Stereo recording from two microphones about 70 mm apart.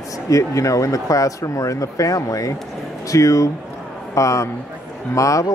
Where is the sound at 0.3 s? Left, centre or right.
Left.